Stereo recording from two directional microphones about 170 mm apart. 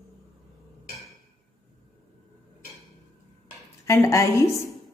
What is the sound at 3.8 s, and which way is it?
Speech, 20° left (ahead or behind).